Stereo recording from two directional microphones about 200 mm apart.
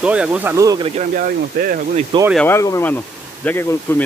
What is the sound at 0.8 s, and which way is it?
Speech, 40° right (ahead or behind).